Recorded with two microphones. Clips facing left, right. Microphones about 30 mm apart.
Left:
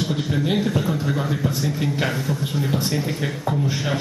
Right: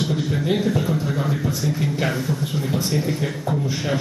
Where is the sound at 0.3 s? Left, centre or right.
Centre.